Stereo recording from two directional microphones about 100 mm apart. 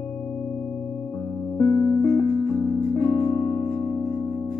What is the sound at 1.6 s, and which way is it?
Music, 15° left (ahead or behind).